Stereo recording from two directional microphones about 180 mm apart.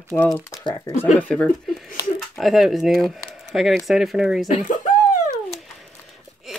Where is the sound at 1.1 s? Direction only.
5° left (ahead or behind).